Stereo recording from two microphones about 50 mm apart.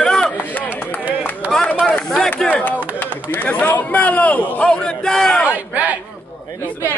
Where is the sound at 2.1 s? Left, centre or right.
Centre.